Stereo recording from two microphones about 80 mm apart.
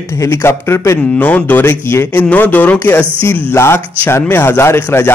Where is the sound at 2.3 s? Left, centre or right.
Left.